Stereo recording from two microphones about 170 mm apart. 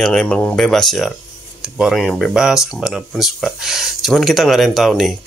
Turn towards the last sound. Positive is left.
turn(degrees=0)  # may be behind; listen again after turning